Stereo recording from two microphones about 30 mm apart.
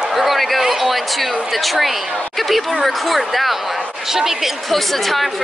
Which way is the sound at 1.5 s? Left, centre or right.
Centre.